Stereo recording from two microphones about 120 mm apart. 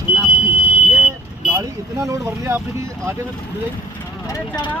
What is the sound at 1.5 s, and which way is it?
Speech, 25° right (ahead or behind).